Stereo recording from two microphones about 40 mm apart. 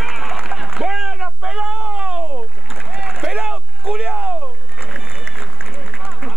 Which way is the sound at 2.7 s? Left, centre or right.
Centre.